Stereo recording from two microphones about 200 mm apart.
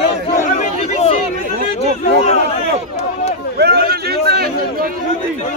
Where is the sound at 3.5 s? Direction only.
55° right (ahead or behind).